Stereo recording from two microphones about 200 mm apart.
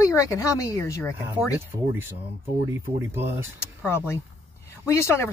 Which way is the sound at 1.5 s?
10° right (ahead or behind).